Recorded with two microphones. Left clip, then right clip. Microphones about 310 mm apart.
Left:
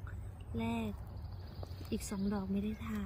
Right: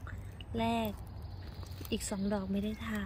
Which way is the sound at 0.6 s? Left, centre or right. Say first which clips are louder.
Right 7 dB; right.